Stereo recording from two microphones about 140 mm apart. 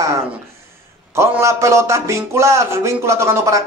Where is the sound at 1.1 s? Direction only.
20° right (ahead or behind).